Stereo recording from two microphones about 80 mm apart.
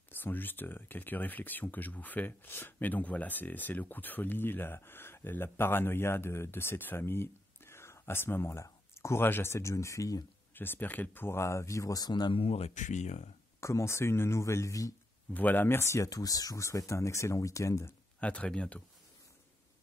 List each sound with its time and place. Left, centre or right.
0.1 s speech: left
10.5 s speech: left
12.1 s speech: left
13.6 s speech: left
15.3 s speech: left
18.2 s speech: centre